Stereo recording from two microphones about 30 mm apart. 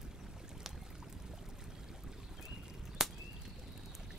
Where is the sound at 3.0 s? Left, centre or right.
Centre.